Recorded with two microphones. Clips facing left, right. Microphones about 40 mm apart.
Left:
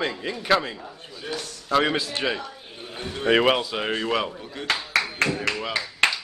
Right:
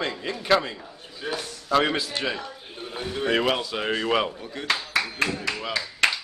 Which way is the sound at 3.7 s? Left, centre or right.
Centre.